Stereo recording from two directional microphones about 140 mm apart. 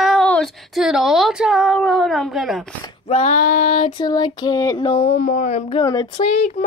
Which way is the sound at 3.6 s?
40° left (ahead or behind).